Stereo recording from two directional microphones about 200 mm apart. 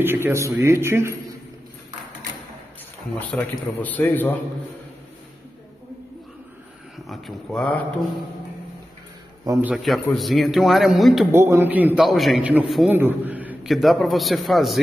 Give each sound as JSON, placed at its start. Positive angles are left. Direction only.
{"t": 0.0, "sound": "a man's voice", "side_deg": -10}
{"t": 3.2, "sound": "a man's voice", "side_deg": 10}
{"t": 7.1, "sound": "a man's voice", "side_deg": 0}
{"t": 9.4, "sound": "a man's voice", "side_deg": -15}
{"t": 9.7, "sound": "a man's voice", "side_deg": 0}
{"t": 11.3, "sound": "a man's voice", "side_deg": -10}